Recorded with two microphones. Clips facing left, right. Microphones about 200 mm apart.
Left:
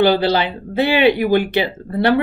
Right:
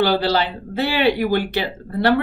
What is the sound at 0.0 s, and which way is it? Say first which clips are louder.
Speech: left 3 dB; 15° left (ahead or behind).